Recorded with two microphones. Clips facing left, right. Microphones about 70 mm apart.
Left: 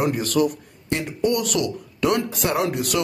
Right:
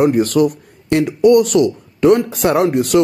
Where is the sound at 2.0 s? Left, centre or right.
Right.